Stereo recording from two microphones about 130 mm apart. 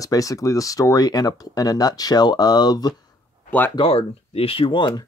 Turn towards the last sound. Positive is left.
turn(degrees=35)  # may be behind; listen again after turning